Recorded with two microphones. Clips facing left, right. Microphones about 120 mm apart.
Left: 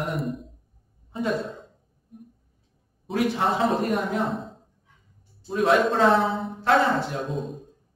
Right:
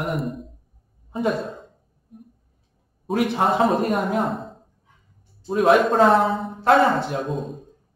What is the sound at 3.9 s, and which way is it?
Speech, 45° right (ahead or behind).